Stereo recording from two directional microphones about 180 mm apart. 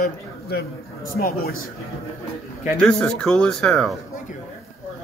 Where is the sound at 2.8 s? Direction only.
5° left (ahead or behind).